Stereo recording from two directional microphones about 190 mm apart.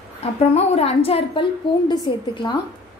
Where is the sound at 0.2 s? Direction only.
35° left (ahead or behind).